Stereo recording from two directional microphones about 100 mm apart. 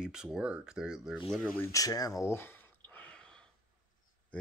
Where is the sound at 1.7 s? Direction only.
40° left (ahead or behind); by 3.2 s 15° left (ahead or behind).